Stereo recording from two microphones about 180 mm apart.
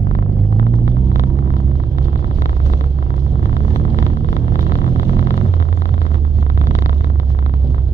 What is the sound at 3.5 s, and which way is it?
Vehicle, 40° left (ahead or behind).